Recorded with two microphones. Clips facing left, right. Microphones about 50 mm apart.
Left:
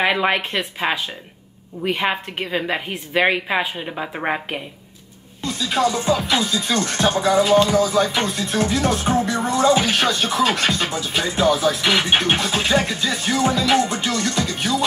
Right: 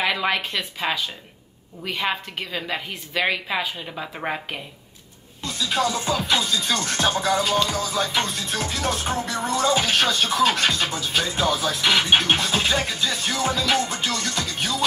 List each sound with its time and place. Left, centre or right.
0.0 s a woman's voice: left
5.4 s speech: centre